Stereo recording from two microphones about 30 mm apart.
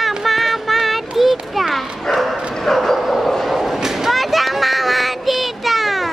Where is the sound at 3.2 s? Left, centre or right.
Centre.